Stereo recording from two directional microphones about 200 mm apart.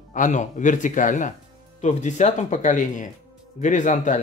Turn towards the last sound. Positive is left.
turn(degrees=35)  # may be behind; listen again after turning